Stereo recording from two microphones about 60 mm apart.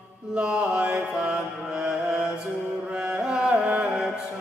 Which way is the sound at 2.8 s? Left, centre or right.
Centre.